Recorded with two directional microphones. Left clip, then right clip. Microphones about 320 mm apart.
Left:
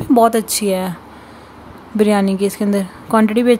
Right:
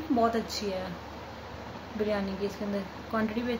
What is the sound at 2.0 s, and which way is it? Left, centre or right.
Speech, left.